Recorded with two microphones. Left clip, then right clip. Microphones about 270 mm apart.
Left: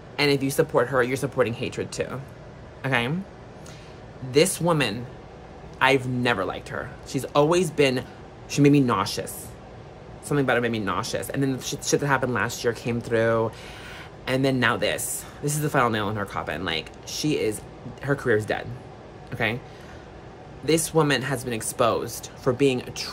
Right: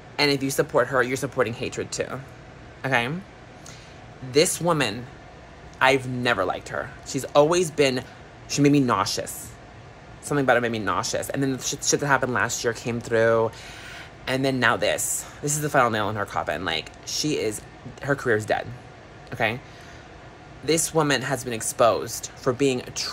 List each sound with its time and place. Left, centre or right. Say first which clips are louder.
0.1 s speech: even; centre
4.3 s speech: even; centre
20.6 s speech: left 1 dB; centre